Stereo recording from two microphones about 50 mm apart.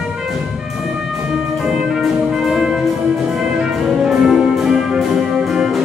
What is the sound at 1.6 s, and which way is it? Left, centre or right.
Brass instrument, centre.